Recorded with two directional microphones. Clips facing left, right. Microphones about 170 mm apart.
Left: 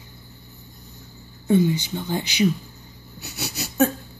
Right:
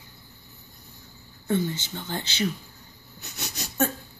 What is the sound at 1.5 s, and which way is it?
Speech, 15° left (ahead or behind).